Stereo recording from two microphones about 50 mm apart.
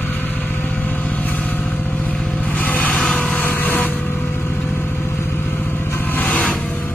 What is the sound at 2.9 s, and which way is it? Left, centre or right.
Vehicle, centre.